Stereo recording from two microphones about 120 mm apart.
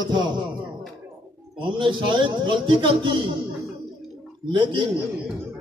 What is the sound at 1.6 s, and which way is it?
A man's voice, 45° right (ahead or behind).